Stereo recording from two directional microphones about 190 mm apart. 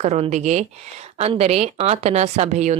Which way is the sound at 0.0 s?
35° right (ahead or behind).